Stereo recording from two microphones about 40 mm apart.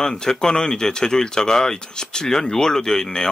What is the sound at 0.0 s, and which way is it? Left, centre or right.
Speech, centre.